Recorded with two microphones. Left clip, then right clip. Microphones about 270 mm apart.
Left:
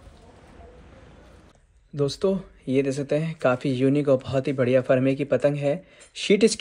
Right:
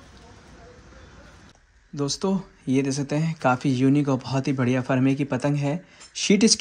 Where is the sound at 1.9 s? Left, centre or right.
Centre.